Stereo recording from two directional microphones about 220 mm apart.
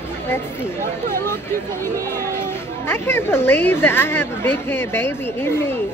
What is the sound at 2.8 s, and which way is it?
Speech, 10° left (ahead or behind).